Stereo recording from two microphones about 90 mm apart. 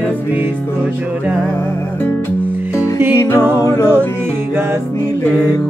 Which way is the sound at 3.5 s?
35° left (ahead or behind).